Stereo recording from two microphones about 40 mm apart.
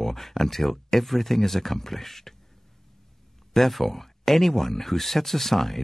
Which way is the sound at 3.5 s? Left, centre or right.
Centre.